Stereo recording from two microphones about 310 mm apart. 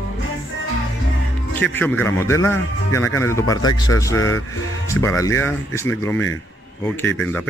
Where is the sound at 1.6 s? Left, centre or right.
Centre.